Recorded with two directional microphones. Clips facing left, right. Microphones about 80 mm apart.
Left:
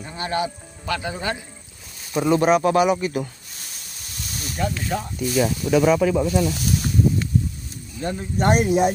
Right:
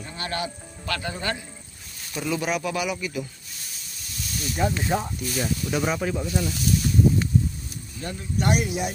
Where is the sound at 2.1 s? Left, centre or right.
Left.